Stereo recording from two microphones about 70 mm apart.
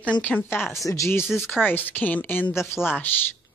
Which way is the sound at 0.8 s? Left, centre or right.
Left.